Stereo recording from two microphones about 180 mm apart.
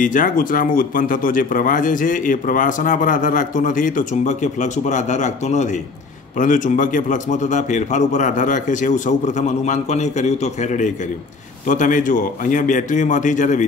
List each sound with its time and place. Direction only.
0.0 s a man's voice: 50° left (ahead or behind)